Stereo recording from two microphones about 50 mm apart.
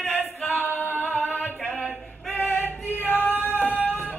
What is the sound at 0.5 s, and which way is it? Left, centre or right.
A capella, left.